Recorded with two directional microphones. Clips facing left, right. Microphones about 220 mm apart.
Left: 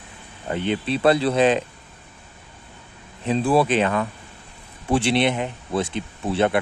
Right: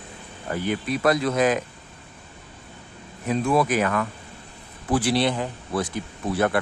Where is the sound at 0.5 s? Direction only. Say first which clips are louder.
Left 2 dB; 25° left (ahead or behind).